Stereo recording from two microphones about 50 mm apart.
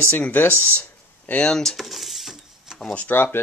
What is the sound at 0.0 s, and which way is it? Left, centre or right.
Speech, left.